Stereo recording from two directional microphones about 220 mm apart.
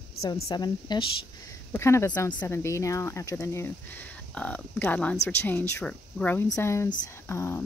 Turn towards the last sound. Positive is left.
turn(degrees=10)  # may be behind; listen again after turning